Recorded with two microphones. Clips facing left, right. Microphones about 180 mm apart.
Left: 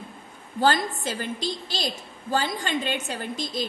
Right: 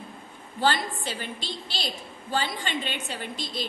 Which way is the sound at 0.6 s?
45° left (ahead or behind).